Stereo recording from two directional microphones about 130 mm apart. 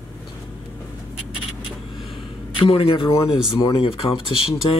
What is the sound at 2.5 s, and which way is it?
A man's voice, 45° left (ahead or behind).